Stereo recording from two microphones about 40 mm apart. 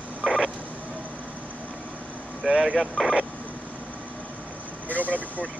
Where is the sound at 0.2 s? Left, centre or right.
Centre.